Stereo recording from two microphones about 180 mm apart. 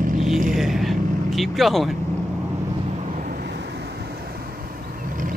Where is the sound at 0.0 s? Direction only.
45° right (ahead or behind).